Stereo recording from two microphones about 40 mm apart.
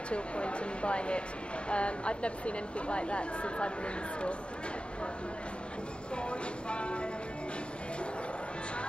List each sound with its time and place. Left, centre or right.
0.1 s speech: left
6.7 s speech: left